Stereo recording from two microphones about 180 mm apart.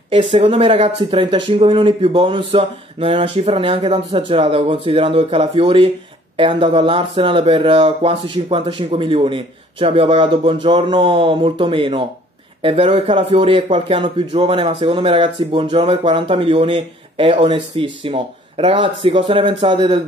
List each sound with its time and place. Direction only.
0.1 s a man's voice: 30° right (ahead or behind)